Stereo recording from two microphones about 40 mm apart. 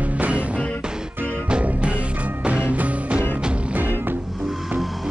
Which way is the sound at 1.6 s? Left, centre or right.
Right.